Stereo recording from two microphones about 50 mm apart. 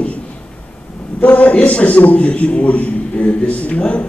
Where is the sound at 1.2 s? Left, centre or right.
Left.